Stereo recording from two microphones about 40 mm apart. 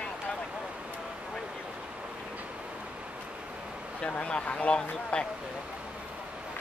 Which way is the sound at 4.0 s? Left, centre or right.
Left.